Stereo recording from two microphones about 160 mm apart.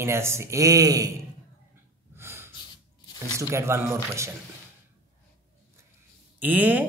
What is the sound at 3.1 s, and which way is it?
Speech, 15° right (ahead or behind).